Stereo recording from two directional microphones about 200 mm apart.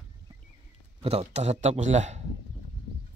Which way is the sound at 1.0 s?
30° right (ahead or behind).